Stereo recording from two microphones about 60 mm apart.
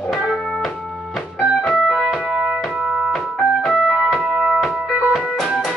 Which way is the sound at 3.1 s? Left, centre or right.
Centre.